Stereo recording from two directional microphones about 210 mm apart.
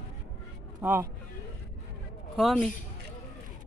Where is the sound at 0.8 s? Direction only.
10° right (ahead or behind).